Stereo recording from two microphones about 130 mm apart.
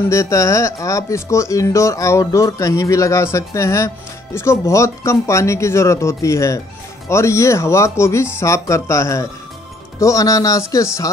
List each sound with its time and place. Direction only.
0.1 s speech: 25° left (ahead or behind)